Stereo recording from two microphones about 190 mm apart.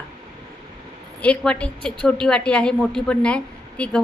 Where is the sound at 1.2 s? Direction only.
5° left (ahead or behind).